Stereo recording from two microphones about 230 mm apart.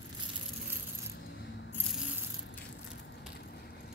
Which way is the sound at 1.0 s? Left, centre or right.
Left.